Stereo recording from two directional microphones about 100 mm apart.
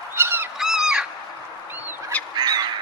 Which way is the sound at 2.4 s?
45° right (ahead or behind).